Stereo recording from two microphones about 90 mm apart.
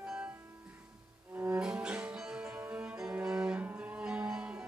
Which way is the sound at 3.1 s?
10° right (ahead or behind).